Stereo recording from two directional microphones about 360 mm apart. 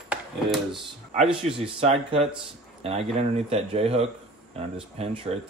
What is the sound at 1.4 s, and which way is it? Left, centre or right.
Speech, centre.